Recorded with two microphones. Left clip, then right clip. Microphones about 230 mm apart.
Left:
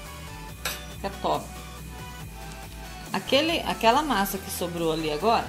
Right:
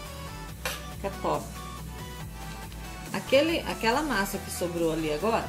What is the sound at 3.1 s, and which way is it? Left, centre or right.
A woman's voice, left.